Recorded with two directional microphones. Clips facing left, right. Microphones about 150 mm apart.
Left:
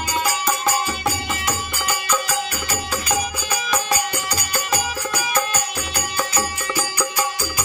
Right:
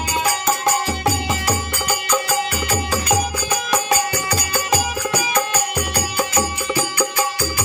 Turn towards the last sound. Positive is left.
turn(degrees=-25)  # may be behind; listen again after turning